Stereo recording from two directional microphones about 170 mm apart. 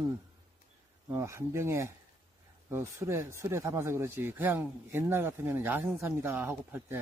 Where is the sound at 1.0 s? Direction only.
15° right (ahead or behind).